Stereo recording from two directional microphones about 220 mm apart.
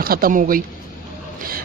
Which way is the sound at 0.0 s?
40° right (ahead or behind).